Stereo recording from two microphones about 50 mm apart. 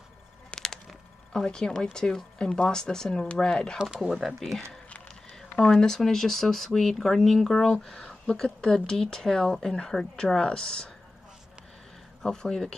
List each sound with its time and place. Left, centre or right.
0.5 s a sound: left
1.3 s speech: centre
4.1 s speech: centre
12.2 s speech: centre